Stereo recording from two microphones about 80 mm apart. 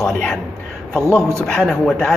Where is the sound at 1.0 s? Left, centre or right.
Right.